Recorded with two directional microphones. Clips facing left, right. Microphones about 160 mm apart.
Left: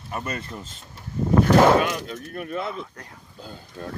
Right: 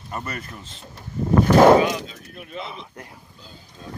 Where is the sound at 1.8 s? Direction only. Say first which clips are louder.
Right 2 dB; 55° left (ahead or behind).